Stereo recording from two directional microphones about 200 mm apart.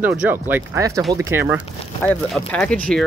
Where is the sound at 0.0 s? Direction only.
10° right (ahead or behind).